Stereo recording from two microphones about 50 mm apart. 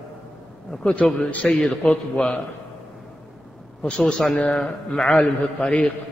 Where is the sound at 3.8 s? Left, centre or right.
Centre.